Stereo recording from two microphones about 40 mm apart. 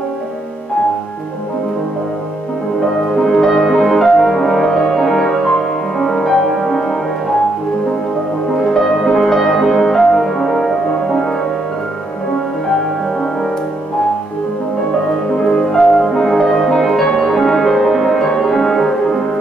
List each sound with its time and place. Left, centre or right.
3.3 s french horn: centre
8.7 s music: centre
15.5 s music: centre